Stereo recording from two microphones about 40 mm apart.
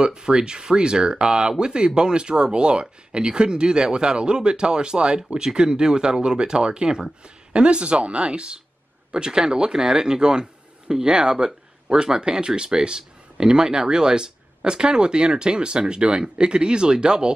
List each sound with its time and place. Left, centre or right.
0.0 s speech: centre